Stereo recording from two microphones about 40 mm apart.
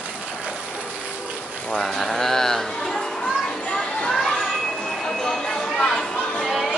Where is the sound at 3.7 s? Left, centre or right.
Centre.